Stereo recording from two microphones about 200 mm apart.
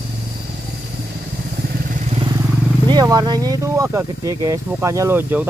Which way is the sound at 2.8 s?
20° right (ahead or behind).